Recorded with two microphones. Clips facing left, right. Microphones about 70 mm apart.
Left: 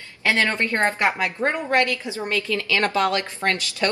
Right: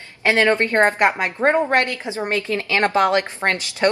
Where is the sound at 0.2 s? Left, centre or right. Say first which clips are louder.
Right 5 dB; right.